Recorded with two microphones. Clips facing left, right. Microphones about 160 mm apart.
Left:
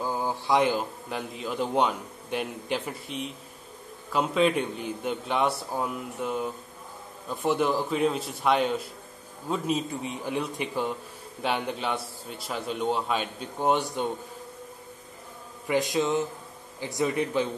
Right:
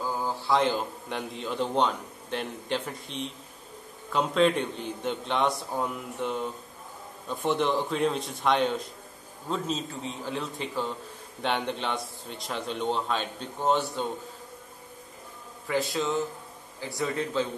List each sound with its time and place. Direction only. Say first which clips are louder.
0.0 s a man's voice: left 1 dB; 15° left (ahead or behind)
15.6 s a man's voice: left 3 dB; 15° left (ahead or behind)